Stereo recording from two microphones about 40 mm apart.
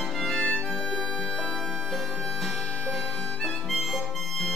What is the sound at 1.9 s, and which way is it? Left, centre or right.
Music, centre.